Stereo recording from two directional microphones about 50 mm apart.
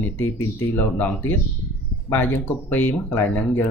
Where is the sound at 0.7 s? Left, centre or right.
Left.